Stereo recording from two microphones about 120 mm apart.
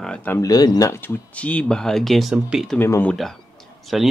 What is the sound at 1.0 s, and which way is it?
Speech, 10° left (ahead or behind).